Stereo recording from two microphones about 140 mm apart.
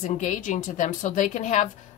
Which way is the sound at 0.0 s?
65° left (ahead or behind).